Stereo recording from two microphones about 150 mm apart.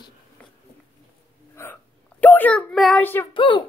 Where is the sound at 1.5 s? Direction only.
15° left (ahead or behind).